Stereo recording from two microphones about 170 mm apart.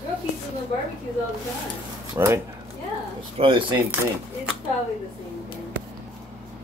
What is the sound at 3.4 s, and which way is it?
Speech, 35° right (ahead or behind).